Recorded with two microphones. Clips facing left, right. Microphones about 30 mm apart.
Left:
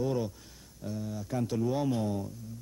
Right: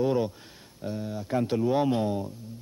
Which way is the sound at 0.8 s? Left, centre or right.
Right.